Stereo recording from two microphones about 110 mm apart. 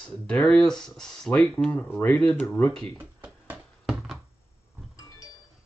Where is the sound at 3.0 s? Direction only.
15° right (ahead or behind).